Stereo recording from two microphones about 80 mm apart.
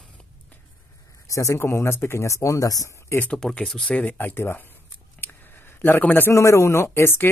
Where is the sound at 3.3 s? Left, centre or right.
Centre; by 4.6 s left.